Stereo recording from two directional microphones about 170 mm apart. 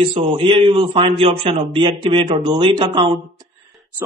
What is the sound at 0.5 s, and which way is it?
A man's voice, 30° right (ahead or behind).